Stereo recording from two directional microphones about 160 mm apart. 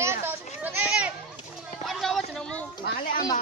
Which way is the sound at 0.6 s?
10° right (ahead or behind).